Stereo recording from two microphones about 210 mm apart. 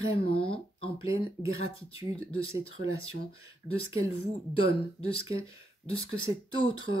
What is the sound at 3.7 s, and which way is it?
Speech, 25° left (ahead or behind).